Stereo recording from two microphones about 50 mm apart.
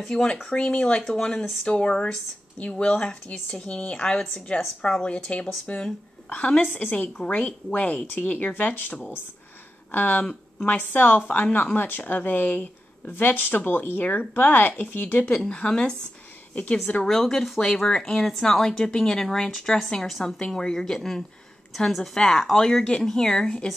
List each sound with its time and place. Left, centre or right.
0.1 s a woman's voice: centre
8.5 s speech: left
10.2 s speech: left
15.3 s speech: centre
17.0 s a woman's voice: centre
22.1 s speech: centre